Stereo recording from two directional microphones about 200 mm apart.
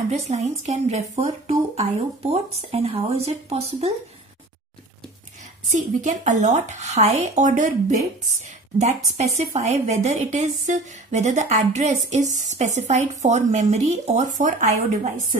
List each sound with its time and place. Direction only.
0.1 s speech: 35° right (ahead or behind)
5.7 s speech: 40° right (ahead or behind)